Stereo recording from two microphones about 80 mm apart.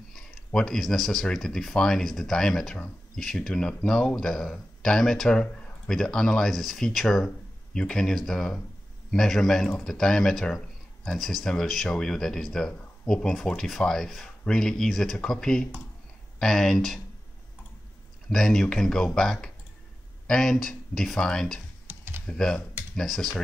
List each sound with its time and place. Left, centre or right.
0.1 s speech: centre
18.3 s speech: centre
21.8 s typing: right
22.2 s speech: centre